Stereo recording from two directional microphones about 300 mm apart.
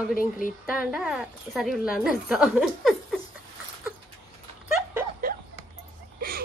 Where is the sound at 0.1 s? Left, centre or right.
Left.